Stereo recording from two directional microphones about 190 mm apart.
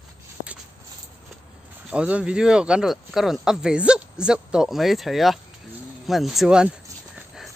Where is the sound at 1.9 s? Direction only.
5° right (ahead or behind).